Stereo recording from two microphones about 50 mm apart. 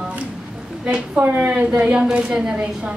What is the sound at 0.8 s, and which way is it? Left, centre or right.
A man's voice, right.